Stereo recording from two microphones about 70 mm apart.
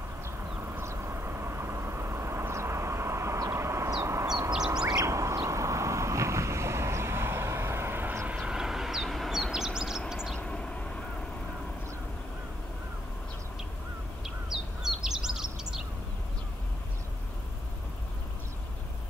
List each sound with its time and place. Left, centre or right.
0.8 s vehicle: right
4.0 s a sound: right
4.8 s a sound: right
8.4 s vehicle: centre
10.3 s vehicle: centre
14.2 s crow: centre